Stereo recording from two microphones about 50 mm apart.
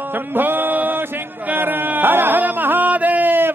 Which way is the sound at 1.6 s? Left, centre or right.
Right.